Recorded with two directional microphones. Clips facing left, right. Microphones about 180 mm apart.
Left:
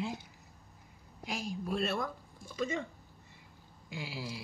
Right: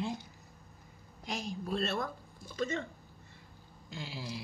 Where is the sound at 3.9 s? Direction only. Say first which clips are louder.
Left 1 dB; 10° left (ahead or behind).